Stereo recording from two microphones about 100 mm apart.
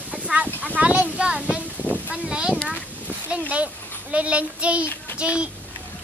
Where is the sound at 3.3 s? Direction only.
10° right (ahead or behind).